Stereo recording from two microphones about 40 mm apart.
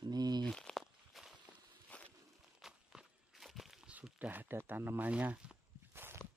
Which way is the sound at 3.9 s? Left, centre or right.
Right.